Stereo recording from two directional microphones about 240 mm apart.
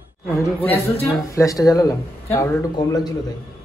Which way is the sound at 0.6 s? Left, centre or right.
Centre.